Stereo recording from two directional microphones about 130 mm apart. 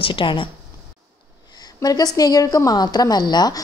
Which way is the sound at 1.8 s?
30° left (ahead or behind).